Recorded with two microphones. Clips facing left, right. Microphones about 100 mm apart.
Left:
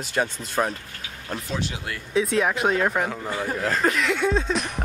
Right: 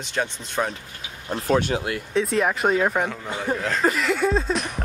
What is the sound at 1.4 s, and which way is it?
Speech, 55° right (ahead or behind).